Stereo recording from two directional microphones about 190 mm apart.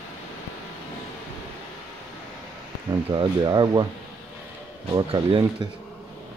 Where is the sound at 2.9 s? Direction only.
20° right (ahead or behind).